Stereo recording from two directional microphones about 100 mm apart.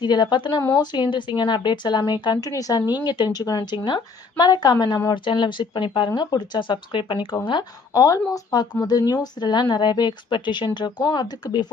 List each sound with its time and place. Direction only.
0.0 s a woman's voice: 50° left (ahead or behind)
7.9 s a woman's voice: 35° left (ahead or behind)